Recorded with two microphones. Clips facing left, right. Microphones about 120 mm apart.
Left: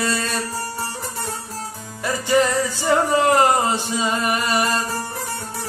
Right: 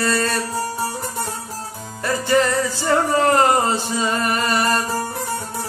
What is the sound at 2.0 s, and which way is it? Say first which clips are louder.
Music: even; 15° left (ahead or behind).